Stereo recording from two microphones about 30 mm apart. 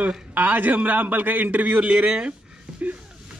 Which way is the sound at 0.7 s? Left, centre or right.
Right.